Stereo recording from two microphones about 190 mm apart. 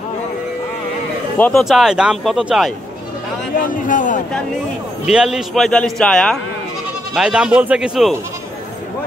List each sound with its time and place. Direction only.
1.4 s a man's voice: centre (ahead or behind)
3.5 s a man's voice: 45° left (ahead or behind)
5.0 s a man's voice: 5° right (ahead or behind)